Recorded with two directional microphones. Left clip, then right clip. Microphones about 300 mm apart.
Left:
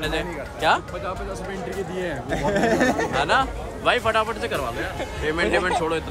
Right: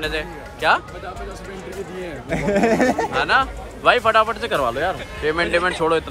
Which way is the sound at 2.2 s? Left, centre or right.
Right.